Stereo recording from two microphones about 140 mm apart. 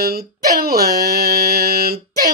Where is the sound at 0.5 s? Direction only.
90° right.